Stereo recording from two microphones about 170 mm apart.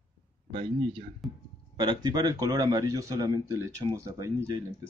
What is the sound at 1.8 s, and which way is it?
Speech, 25° right (ahead or behind).